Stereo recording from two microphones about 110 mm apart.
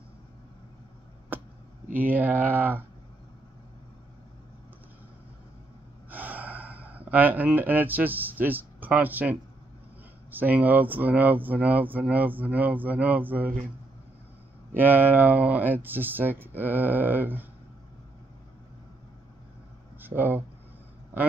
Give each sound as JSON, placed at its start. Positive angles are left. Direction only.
{"t": 2.0, "sound": "speech", "side_deg": -15}
{"t": 6.0, "sound": "gasp", "side_deg": -15}
{"t": 10.3, "sound": "speech", "side_deg": -15}
{"t": 14.8, "sound": "speech", "side_deg": -15}
{"t": 20.0, "sound": "speech", "side_deg": -20}